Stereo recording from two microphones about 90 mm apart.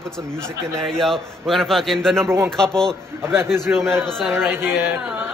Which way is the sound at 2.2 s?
30° right (ahead or behind).